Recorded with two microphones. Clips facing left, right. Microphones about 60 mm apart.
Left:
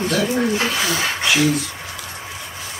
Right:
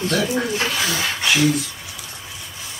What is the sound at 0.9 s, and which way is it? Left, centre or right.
Speech, left.